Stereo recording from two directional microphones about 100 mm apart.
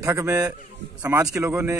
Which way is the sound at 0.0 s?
25° right (ahead or behind).